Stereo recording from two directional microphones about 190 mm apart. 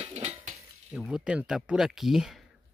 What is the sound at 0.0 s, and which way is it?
Dishes, 35° right (ahead or behind).